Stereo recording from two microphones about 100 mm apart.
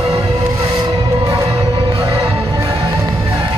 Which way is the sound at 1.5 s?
75° right (ahead or behind).